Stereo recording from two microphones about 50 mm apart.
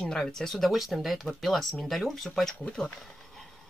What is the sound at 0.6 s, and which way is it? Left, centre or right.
Speech, centre.